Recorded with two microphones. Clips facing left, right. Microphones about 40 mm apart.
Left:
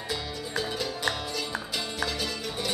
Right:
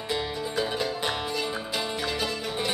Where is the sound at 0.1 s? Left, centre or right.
Right.